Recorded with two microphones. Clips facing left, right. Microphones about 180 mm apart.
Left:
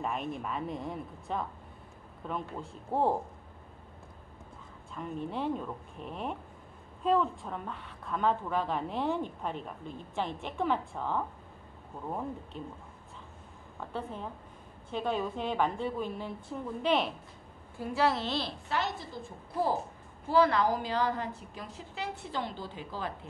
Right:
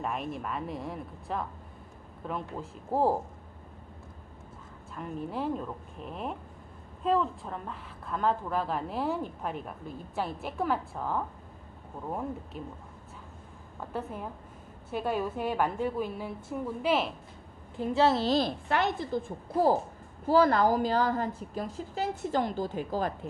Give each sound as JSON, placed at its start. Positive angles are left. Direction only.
{"t": 0.0, "sound": "a woman's voice", "side_deg": 0}
{"t": 4.9, "sound": "a woman's voice", "side_deg": -5}
{"t": 12.6, "sound": "a woman's voice", "side_deg": -5}
{"t": 13.7, "sound": "a woman's voice", "side_deg": -10}
{"t": 17.7, "sound": "a woman's voice", "side_deg": -25}
{"t": 18.7, "sound": "a woman's voice", "side_deg": -55}
{"t": 20.2, "sound": "a woman's voice", "side_deg": -45}